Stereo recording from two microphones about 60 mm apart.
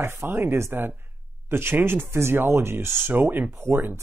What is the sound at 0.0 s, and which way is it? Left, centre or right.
Speech, right.